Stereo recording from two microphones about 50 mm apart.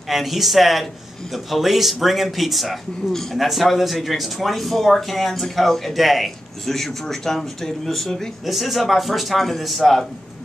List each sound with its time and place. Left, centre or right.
0.1 s speech: centre